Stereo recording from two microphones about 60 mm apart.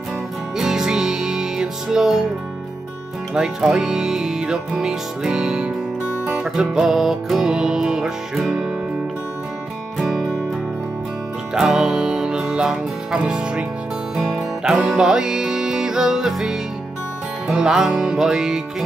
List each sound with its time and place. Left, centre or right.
0.6 s music: centre
3.3 s speech: centre
11.5 s music: centre
13.2 s speech: centre
14.1 s music: centre
17.5 s speech: centre